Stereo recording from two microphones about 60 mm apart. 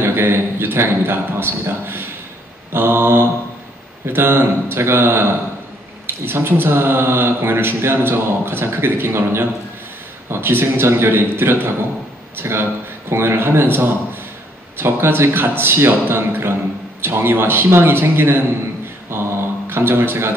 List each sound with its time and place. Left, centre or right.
0.0 s a man's voice: right
19.1 s a sound: right
19.7 s speech: right